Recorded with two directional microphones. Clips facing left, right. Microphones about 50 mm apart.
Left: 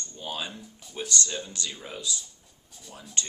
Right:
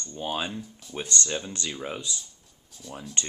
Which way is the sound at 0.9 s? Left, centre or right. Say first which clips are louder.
Right 1 dB; right.